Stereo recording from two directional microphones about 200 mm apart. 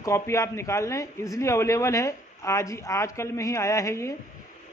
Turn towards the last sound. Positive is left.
turn(degrees=15)  # may be behind; listen again after turning